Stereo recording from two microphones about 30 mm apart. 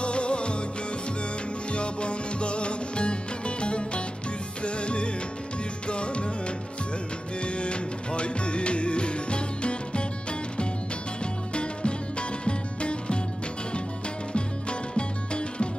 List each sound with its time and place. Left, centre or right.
0.0 s music: left
1.7 s music: left
7.4 s music: left
11.5 s music: left
14.3 s music: left